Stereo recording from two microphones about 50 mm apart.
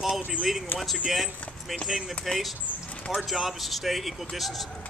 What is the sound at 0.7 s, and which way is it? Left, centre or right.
Speech, left.